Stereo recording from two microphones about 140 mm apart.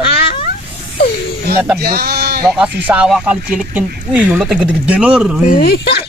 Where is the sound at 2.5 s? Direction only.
10° right (ahead or behind).